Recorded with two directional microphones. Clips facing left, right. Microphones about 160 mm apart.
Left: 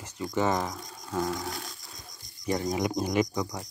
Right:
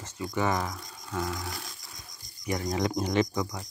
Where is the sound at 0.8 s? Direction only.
35° left (ahead or behind).